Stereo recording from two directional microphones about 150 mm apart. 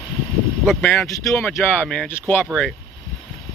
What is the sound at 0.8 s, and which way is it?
Speech, 5° left (ahead or behind).